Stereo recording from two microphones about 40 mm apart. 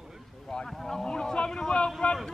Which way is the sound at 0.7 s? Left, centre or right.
Centre.